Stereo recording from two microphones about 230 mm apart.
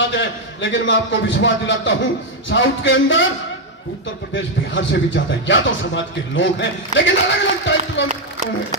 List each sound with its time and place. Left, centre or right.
0.1 s speech: left
2.5 s music: left
4.3 s speech: left